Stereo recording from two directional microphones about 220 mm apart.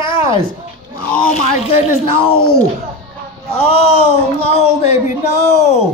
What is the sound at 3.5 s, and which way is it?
A man's voice, 25° left (ahead or behind).